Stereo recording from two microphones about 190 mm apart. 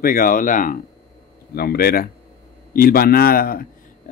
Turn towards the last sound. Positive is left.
turn(degrees=50)  # may be behind; listen again after turning